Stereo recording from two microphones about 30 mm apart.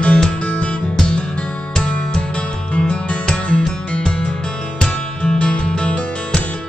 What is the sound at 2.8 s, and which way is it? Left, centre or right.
Music, left.